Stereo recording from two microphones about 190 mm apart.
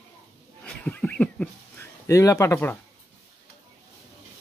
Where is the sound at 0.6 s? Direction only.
5° left (ahead or behind).